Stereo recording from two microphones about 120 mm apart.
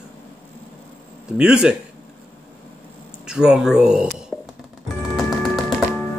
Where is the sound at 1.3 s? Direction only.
5° right (ahead or behind).